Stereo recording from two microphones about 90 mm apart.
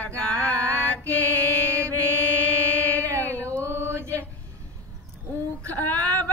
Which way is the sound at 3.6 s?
30° right (ahead or behind).